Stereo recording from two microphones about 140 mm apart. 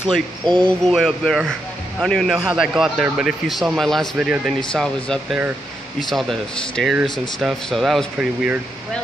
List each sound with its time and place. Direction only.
0.5 s speech: 30° right (ahead or behind)
0.8 s speech: centre (ahead or behind)